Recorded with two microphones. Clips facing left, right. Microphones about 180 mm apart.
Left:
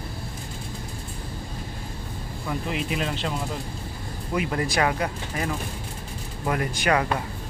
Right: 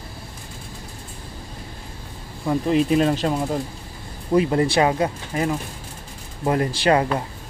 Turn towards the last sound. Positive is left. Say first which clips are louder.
# right 4 dB
turn(degrees=-30)  # may be behind; listen again after turning